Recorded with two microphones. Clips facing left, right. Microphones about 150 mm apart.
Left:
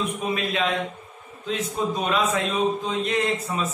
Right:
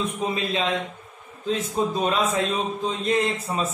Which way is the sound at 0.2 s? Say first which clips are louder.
Even; 30° right (ahead or behind).